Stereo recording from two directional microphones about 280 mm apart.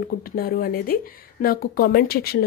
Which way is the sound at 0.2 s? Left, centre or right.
Left.